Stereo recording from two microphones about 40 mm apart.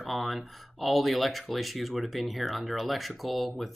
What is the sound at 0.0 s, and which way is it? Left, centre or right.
Speech, centre.